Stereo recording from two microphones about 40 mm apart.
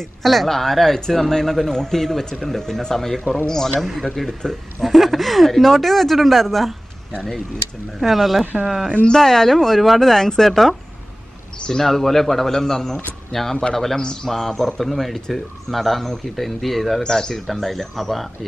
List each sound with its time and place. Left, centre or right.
0.2 s speech: centre
3.8 s speech: centre
8.0 s speech: centre
9.1 s speech: centre
11.8 s speech: centre
17.0 s speech: centre